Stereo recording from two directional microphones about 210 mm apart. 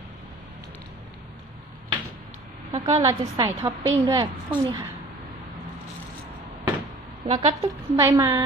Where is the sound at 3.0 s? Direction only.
15° right (ahead or behind).